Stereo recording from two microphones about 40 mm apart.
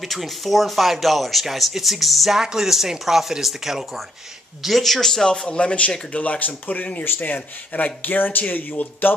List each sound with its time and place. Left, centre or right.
0.0 s speech: centre
5.2 s speech: centre; by 6.9 s left
7.1 s speech: left
7.3 s speech: left